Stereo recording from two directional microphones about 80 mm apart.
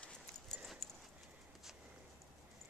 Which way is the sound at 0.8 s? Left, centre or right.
Centre.